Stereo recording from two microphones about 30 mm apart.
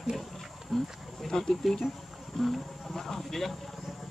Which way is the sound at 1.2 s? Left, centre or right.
Centre.